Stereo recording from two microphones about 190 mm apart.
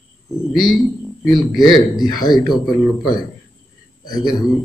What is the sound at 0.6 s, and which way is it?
Speech, centre (ahead or behind).